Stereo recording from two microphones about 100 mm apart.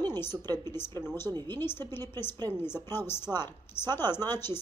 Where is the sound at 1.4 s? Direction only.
20° left (ahead or behind).